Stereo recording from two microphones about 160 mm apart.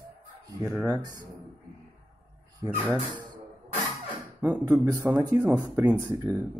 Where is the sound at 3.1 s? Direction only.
30° right (ahead or behind).